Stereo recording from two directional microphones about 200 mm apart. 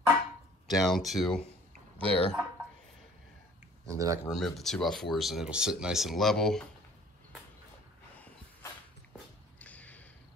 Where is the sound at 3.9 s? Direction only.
15° right (ahead or behind).